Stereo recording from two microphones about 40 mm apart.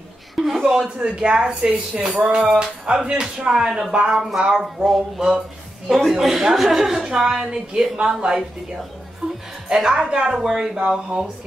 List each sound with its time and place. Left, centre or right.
0.4 s a sound: centre
0.9 s speech: right
1.7 s speech: right
2.2 s a woman's voice: right
9.2 s music: centre
9.8 s a woman's voice: right